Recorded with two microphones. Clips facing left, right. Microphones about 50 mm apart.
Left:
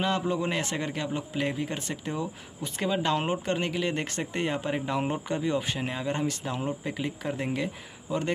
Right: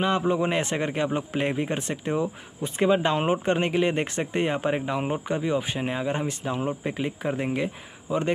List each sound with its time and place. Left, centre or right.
0.0 s speech: right